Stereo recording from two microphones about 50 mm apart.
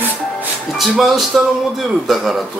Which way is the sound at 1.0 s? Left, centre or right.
Centre.